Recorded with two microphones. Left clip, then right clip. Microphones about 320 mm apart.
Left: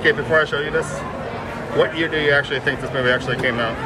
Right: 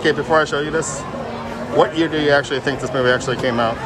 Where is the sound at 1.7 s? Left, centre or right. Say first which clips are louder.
Right 3 dB; centre.